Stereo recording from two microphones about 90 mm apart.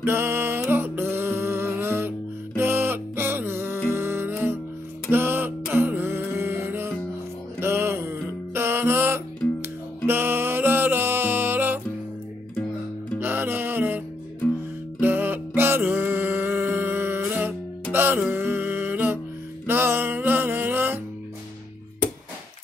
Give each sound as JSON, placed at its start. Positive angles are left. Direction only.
{"t": 0.0, "sound": "music", "side_deg": -25}
{"t": 13.2, "sound": "music", "side_deg": -25}